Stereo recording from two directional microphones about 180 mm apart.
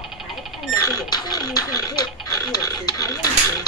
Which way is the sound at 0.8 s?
20° left (ahead or behind).